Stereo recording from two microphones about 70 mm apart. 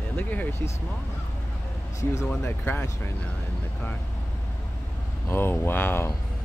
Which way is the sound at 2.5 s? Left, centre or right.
Left.